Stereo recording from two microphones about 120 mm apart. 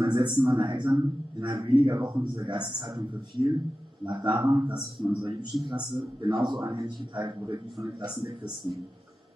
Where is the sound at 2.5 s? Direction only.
40° right (ahead or behind).